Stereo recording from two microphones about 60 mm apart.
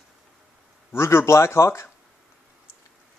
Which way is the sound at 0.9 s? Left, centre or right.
Left.